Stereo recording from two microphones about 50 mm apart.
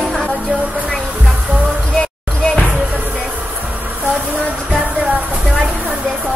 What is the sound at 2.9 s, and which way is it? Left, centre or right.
Music, right.